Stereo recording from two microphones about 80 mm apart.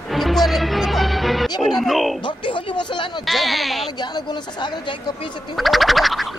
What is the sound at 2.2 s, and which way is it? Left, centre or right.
Speech, left.